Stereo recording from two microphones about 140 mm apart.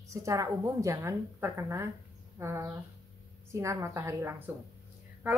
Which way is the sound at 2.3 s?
20° right (ahead or behind).